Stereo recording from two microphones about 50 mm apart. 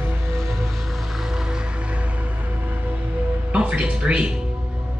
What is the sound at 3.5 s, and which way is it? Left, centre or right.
Speech, right.